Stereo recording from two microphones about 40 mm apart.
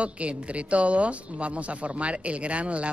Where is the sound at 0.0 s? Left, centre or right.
Right.